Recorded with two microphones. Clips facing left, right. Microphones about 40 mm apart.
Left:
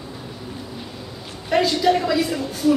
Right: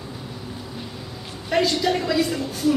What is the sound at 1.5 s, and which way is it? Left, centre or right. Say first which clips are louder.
Speech: left 3 dB; centre.